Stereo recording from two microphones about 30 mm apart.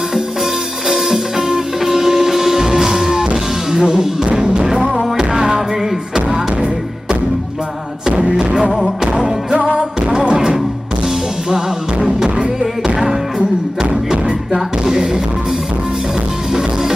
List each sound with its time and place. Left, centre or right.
0.8 s music: centre
8.3 s music: right
9.8 s music: right
14.1 s music: right